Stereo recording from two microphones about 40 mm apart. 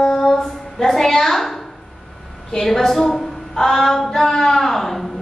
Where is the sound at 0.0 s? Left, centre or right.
Left.